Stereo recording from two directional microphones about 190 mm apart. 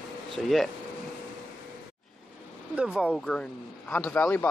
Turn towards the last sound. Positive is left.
turn(degrees=10)  # may be behind; listen again after turning